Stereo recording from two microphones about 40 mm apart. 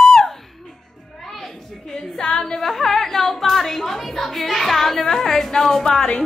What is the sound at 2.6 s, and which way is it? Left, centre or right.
Music, centre.